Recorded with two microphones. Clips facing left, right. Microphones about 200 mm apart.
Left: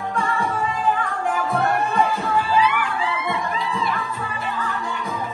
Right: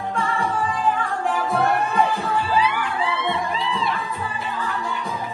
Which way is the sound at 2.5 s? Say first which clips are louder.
Left 1 dB; 30° right (ahead or behind).